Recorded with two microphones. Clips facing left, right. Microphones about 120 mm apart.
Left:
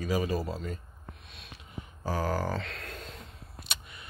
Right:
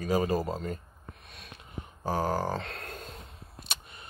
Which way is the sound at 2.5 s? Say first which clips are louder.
Right 1 dB; 45° right (ahead or behind).